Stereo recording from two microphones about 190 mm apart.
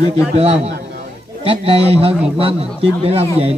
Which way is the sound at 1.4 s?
30° right (ahead or behind).